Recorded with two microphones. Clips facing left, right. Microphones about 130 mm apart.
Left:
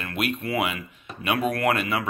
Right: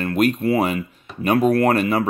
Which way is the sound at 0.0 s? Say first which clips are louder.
Right 10 dB; 40° right (ahead or behind).